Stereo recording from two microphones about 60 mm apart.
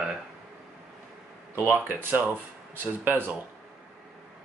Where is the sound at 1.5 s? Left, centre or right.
Right.